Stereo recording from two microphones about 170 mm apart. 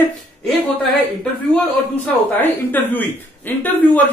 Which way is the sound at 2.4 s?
10° left (ahead or behind).